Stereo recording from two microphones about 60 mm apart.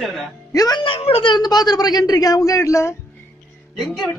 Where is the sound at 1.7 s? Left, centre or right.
Left.